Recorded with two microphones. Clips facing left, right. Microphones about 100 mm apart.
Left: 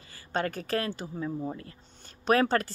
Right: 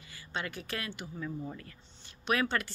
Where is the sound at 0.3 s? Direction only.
45° left (ahead or behind).